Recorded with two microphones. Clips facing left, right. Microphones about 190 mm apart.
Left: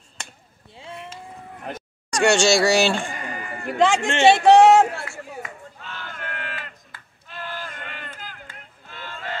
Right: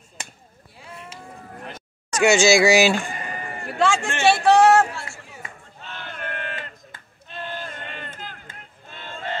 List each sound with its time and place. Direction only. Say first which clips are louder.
0.7 s a sound: left 4 dB; 25° left (ahead or behind)
2.1 s speech: right 1 dB; 5° right (ahead or behind)
3.6 s a man's voice: left 3 dB; 20° left (ahead or behind)
5.1 s chop: left 8 dB; 50° left (ahead or behind)
5.9 s battle cry: right 2 dB; 20° right (ahead or behind)
8.8 s a sound: right 2 dB; 25° right (ahead or behind)